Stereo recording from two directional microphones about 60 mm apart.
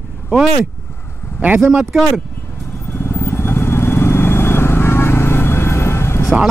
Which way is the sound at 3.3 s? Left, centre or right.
Left.